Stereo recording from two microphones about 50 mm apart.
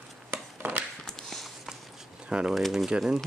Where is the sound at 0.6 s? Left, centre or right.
Right.